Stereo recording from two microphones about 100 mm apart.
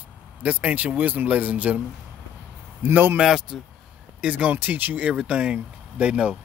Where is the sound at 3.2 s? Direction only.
Centre (ahead or behind).